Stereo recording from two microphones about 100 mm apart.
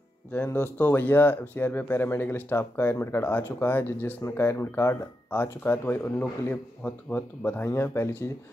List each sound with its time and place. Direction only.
0.3 s speech: 20° left (ahead or behind)